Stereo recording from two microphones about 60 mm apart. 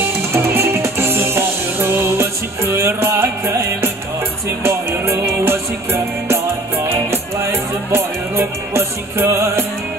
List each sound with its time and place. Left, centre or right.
0.0 s music: right